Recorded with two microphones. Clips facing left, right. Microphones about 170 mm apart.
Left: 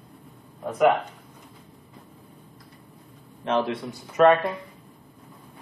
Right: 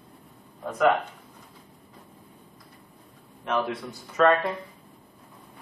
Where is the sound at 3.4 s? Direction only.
25° left (ahead or behind).